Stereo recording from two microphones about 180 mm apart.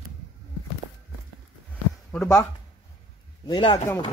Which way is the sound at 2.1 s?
20° left (ahead or behind).